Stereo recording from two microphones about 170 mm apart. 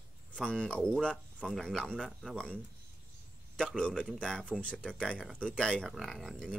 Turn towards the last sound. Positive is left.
turn(degrees=0)  # may be behind; listen again after turning